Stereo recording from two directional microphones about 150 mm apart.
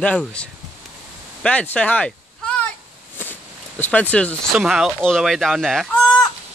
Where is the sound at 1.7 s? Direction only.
10° left (ahead or behind).